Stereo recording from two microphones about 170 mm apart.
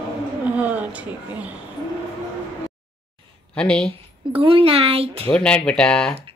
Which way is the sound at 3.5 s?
5° left (ahead or behind).